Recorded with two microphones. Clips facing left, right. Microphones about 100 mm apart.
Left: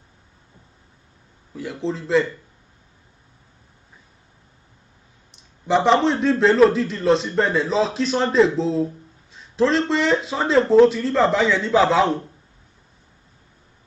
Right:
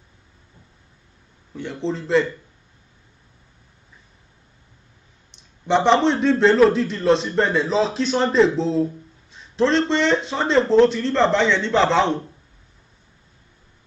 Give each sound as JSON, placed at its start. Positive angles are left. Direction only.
{"t": 1.5, "sound": "a man's voice", "side_deg": 5}
{"t": 5.3, "sound": "a man's voice", "side_deg": 0}